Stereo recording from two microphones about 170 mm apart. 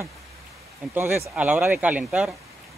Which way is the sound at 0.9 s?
10° right (ahead or behind).